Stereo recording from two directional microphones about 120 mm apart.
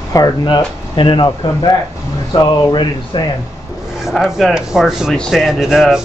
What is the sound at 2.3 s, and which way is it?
Speech, 40° left (ahead or behind).